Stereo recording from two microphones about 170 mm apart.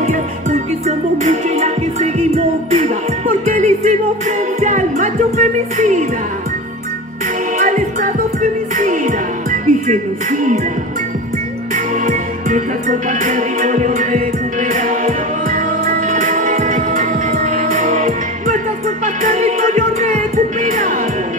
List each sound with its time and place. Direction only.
0.0 s music: 45° right (ahead or behind)
7.5 s music: 45° right (ahead or behind)
11.7 s music: 50° right (ahead or behind)